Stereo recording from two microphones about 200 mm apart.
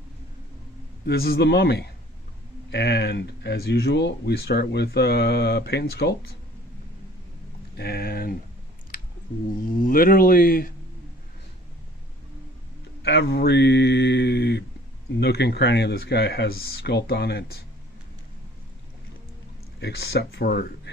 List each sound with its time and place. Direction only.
1.0 s speech: 50° left (ahead or behind)
7.7 s speech: 50° left (ahead or behind)
9.8 s speech: 45° left (ahead or behind)
13.0 s speech: 55° left (ahead or behind)
19.8 s speech: 55° left (ahead or behind)